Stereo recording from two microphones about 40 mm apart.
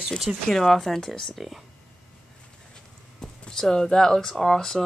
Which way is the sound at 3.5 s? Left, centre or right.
Centre.